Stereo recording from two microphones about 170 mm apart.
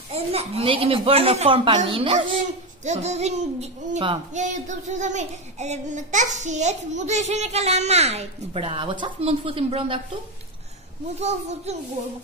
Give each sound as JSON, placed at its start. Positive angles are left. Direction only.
{"t": 0.1, "sound": "speech", "side_deg": -35}
{"t": 2.8, "sound": "speech", "side_deg": -40}
{"t": 11.1, "sound": "speech", "side_deg": -40}